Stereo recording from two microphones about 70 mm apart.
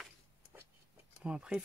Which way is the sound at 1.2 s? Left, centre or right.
Centre.